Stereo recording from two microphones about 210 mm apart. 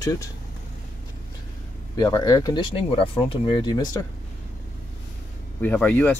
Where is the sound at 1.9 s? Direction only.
20° left (ahead or behind).